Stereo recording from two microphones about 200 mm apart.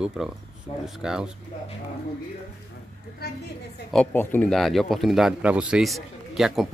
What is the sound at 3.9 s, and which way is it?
Speech, 5° left (ahead or behind).